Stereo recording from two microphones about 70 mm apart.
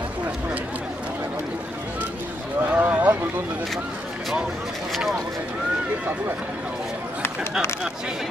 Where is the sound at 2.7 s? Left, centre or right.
Right.